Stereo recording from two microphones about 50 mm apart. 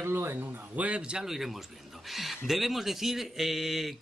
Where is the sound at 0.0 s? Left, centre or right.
Right.